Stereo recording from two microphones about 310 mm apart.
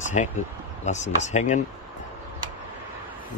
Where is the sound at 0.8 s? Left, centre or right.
Left.